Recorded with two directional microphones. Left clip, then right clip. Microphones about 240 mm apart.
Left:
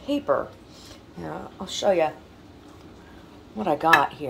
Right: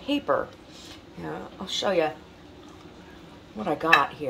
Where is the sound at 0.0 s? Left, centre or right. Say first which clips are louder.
Left 1 dB; centre.